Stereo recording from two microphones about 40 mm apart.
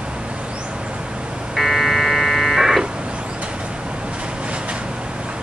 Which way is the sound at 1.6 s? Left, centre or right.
Centre.